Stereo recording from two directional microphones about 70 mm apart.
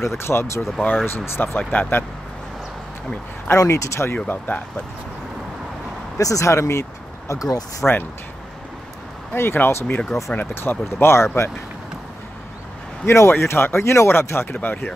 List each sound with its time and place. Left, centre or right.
0.2 s speech: left
1.6 s speech: left
3.4 s speech: left
6.1 s speech: left
7.2 s speech: left
7.8 s speech: centre
9.3 s speech: left
13.0 s speech: left